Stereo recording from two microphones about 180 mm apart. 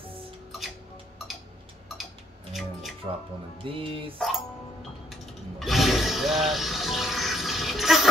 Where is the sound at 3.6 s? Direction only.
30° right (ahead or behind).